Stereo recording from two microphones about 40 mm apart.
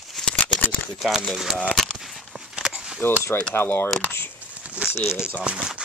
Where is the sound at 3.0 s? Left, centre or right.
Left.